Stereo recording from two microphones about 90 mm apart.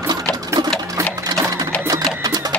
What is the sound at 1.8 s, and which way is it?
Music, 45° right (ahead or behind).